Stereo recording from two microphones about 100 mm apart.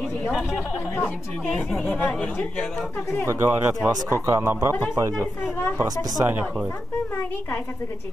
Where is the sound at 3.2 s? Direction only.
25° right (ahead or behind).